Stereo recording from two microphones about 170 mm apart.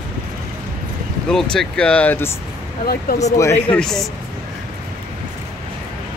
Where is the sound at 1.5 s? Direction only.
5° left (ahead or behind).